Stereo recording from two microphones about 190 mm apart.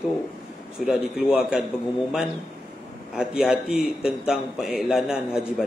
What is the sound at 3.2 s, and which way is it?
A man's voice, 5° right (ahead or behind).